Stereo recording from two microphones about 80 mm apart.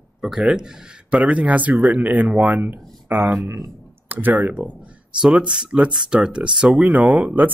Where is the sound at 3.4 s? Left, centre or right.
Right.